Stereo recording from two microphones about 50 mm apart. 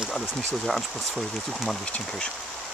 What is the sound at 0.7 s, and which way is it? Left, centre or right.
Speech, centre.